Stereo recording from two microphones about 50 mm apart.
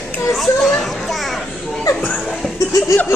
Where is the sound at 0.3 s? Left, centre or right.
Centre.